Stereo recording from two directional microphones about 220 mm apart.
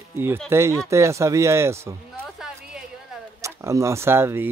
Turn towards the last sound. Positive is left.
turn(degrees=-10)  # may be behind; listen again after turning